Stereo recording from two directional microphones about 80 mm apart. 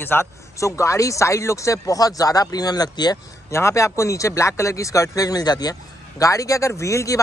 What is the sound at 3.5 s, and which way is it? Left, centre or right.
A man's voice, left.